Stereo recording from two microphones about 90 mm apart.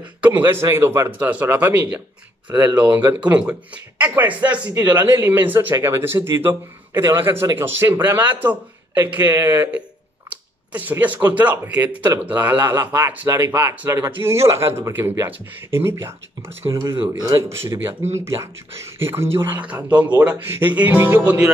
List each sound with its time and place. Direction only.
0.2 s speech: 20° right (ahead or behind)
3.2 s speech: 15° right (ahead or behind)
19.6 s speech: 15° right (ahead or behind)